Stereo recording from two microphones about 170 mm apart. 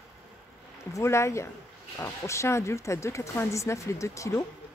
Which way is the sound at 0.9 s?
15° left (ahead or behind).